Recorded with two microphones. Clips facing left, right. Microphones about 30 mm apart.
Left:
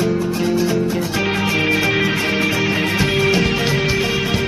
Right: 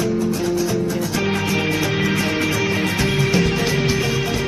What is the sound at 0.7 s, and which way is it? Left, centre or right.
Music, left.